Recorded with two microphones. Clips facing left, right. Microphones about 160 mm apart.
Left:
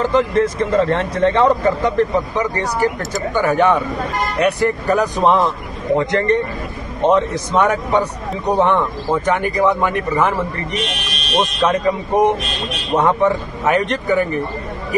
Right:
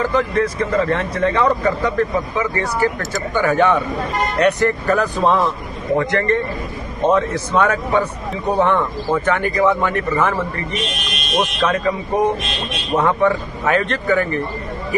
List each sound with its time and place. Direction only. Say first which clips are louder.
0.0 s a man's voice: left 2 dB; 25° left (ahead or behind)
3.0 s speech: left 1 dB; centre (ahead or behind)
3.5 s a man's voice: even; 15° left (ahead or behind)
11.3 s a man's voice: left 2 dB; 20° left (ahead or behind)